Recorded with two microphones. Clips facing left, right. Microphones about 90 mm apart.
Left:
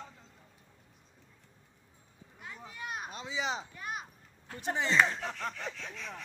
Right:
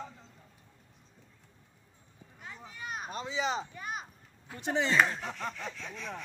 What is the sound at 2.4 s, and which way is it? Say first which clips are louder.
Children playing: even; centre (ahead or behind).